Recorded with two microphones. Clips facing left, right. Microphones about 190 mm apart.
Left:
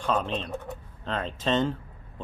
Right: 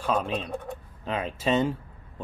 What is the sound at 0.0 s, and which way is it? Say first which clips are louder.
Speech: right 1 dB; 10° right (ahead or behind).